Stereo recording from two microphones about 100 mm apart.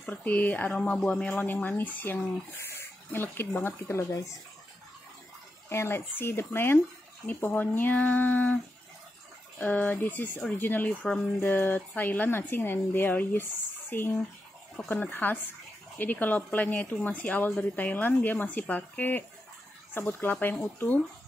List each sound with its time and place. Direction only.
0.0 s a woman's voice: 15° left (ahead or behind)
2.5 s a sound: 25° left (ahead or behind)
3.6 s speech: 25° left (ahead or behind)
5.7 s a woman's voice: 25° left (ahead or behind)
9.6 s a woman's voice: 15° left (ahead or behind)